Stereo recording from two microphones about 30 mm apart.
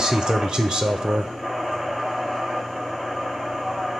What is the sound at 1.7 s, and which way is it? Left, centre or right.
Train, centre.